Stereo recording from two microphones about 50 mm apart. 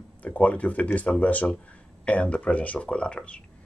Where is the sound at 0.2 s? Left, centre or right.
Left.